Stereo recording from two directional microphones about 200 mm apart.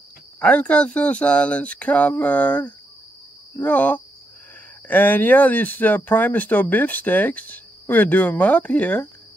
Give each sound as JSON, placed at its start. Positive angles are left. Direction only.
{"t": 0.4, "sound": "speech", "side_deg": 5}